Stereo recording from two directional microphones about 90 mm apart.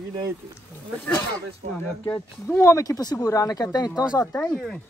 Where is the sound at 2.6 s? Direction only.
30° left (ahead or behind).